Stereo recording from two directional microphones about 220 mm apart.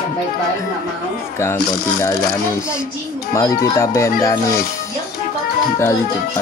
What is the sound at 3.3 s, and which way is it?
Speech, 15° left (ahead or behind).